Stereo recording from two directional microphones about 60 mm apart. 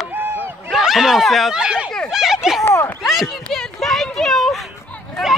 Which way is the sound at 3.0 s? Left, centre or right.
Centre.